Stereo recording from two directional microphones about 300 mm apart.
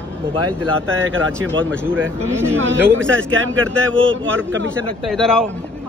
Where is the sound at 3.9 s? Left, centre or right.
Centre.